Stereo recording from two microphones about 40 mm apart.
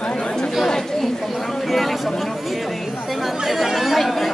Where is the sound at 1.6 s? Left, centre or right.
Centre.